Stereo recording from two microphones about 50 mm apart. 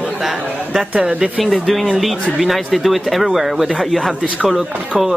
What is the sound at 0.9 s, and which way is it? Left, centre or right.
Speech, right.